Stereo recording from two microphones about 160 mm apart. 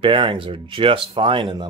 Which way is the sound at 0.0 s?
30° right (ahead or behind).